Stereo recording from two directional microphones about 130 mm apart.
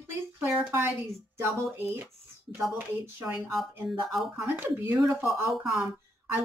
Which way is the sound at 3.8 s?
Centre (ahead or behind).